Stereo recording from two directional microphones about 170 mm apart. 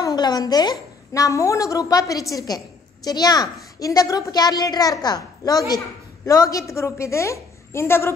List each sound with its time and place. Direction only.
0.0 s a woman's voice: 25° left (ahead or behind)